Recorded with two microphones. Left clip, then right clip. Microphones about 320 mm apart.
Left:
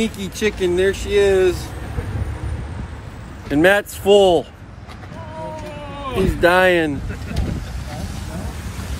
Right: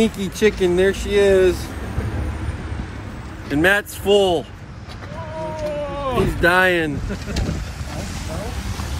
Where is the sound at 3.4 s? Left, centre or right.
Left.